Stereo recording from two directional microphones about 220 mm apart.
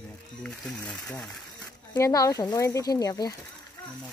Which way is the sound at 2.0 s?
15° left (ahead or behind).